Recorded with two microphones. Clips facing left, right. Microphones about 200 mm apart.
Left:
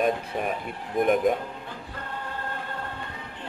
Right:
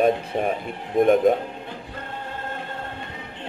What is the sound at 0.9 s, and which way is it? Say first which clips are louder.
Speech: right 5 dB; 25° right (ahead or behind).